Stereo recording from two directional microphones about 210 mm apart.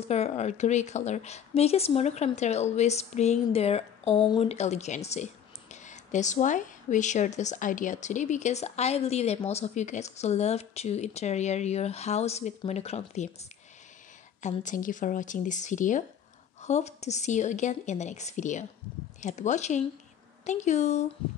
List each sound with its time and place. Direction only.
0.1 s speech: 30° left (ahead or behind)